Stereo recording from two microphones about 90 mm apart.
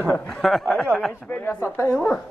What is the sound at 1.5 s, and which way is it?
Speech, 25° left (ahead or behind).